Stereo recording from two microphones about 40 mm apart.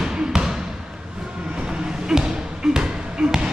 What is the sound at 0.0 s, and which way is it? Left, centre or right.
Basketball bounce, centre.